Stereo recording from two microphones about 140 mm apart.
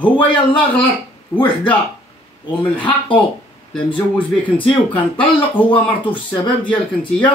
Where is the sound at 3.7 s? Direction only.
40° left (ahead or behind).